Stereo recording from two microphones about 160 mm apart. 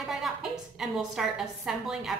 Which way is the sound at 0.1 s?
Centre (ahead or behind).